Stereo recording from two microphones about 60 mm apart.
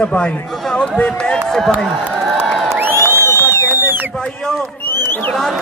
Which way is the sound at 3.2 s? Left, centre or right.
Left.